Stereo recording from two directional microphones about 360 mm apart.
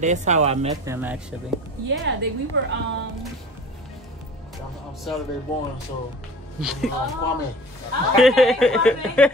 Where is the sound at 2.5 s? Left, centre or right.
Right.